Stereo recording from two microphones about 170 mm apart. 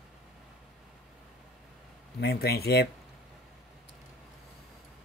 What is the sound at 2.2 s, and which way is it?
Speech, 65° left (ahead or behind).